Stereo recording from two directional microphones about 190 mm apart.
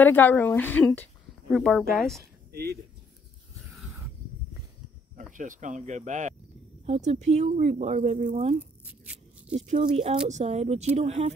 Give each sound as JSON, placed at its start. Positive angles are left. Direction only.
{"t": 0.0, "sound": "speech", "side_deg": 10}
{"t": 2.5, "sound": "speech", "side_deg": -55}
{"t": 5.3, "sound": "speech", "side_deg": -45}
{"t": 8.8, "sound": "a sound", "side_deg": -5}
{"t": 9.7, "sound": "speech", "side_deg": -35}